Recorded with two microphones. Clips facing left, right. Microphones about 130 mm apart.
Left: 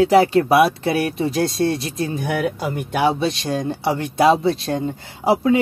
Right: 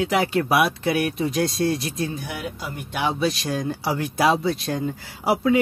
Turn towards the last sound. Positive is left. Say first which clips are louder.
# left 4 dB
turn(degrees=25)  # may be behind; listen again after turning